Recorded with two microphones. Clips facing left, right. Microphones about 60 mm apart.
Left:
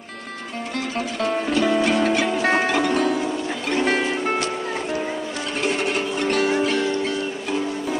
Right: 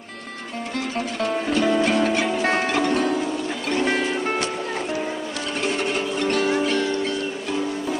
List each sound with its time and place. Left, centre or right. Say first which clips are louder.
0.7 s music: even; centre
3.7 s music: left 1 dB; centre
5.6 s music: left 1 dB; centre